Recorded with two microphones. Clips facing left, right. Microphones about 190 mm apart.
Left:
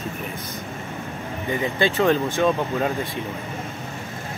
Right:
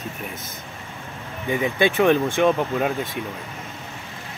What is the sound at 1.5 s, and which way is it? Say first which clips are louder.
Speech: right 2 dB; 15° right (ahead or behind).